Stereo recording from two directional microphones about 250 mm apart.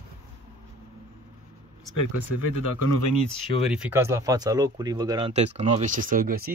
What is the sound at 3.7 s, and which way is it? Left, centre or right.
Speech, centre.